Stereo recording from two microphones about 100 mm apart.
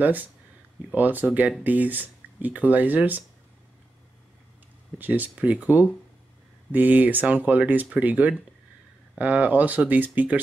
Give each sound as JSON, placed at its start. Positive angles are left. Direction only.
{"t": 0.0, "sound": "speech", "side_deg": -15}
{"t": 4.9, "sound": "speech", "side_deg": -15}